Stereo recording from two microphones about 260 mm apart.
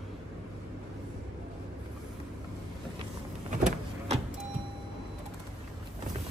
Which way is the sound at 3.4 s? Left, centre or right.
Right.